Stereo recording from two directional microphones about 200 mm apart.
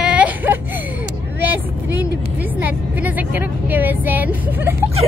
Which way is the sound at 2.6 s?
10° right (ahead or behind).